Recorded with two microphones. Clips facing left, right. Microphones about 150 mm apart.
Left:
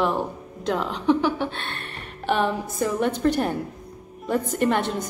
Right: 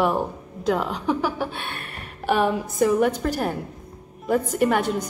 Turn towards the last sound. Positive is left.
turn(degrees=-10)  # may be behind; listen again after turning